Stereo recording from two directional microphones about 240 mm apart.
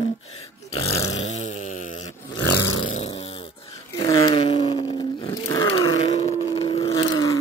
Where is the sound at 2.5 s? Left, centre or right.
Left.